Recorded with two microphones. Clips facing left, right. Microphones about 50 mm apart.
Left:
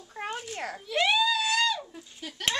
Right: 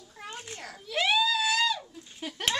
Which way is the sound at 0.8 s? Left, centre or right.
Centre.